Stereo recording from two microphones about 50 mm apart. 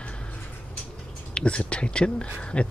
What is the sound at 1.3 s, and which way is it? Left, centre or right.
Speech, left.